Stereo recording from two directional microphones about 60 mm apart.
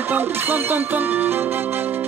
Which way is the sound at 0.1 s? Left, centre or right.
Right.